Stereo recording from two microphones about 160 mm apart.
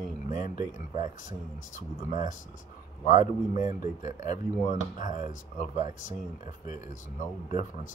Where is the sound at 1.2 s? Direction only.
50° left (ahead or behind).